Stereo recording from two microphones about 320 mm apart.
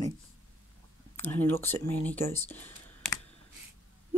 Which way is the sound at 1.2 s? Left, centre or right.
Centre.